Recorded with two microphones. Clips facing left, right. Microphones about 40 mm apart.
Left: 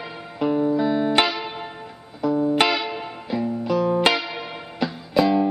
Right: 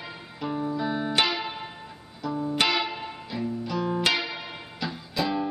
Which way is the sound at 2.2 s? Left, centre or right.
Centre.